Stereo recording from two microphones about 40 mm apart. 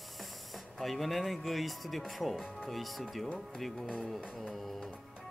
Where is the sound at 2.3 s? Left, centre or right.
Centre.